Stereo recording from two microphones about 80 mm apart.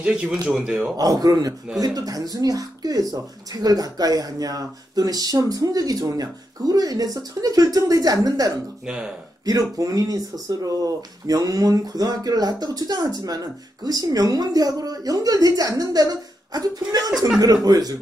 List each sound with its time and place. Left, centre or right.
0.0 s a man's voice: centre
0.9 s speech: right
8.8 s a man's voice: centre
9.5 s speech: right